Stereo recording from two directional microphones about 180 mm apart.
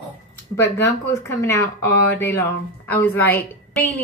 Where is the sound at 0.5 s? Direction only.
15° left (ahead or behind).